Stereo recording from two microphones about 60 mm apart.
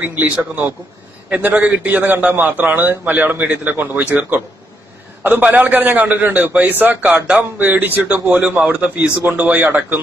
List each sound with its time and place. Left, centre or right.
0.0 s a man's voice: right
5.4 s a man's voice: right
7.6 s speech: right
8.4 s a man's voice: right